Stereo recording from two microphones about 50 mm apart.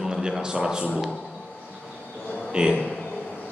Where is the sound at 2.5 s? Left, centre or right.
Centre.